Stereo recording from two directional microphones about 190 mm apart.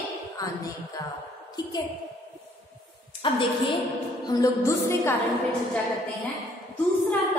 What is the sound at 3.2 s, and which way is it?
Speech, 25° left (ahead or behind).